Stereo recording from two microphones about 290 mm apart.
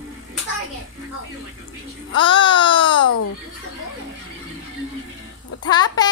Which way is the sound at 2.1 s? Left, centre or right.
Centre.